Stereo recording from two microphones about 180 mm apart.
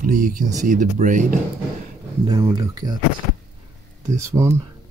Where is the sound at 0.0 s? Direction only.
45° right (ahead or behind).